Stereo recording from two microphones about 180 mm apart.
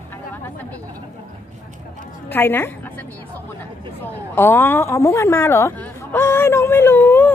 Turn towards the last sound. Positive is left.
turn(degrees=10)  # may be behind; listen again after turning